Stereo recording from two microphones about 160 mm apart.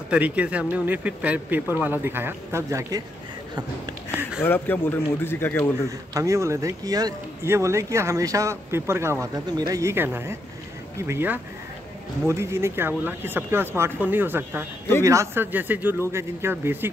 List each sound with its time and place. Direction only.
0.1 s speech: 10° right (ahead or behind)
4.4 s speech: 10° left (ahead or behind)
5.9 s speech: 20° right (ahead or behind)